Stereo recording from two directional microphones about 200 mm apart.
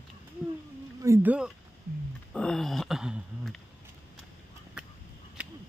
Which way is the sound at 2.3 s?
5° left (ahead or behind).